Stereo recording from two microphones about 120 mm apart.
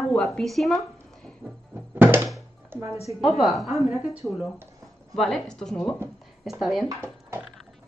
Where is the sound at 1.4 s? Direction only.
20° right (ahead or behind).